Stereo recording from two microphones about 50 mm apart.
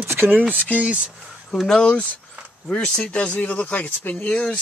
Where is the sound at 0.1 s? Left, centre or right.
Right.